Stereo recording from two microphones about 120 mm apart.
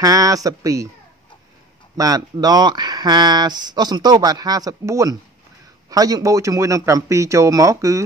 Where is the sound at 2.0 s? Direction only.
30° right (ahead or behind).